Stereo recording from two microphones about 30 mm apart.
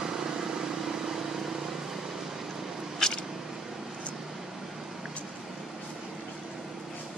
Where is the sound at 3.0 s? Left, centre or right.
Left.